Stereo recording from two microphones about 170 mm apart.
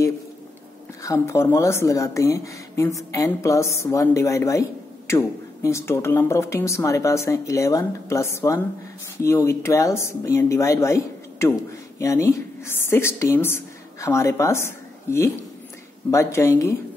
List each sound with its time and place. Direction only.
1.0 s speech: 15° left (ahead or behind)